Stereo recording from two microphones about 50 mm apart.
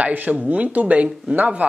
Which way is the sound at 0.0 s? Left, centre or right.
Right.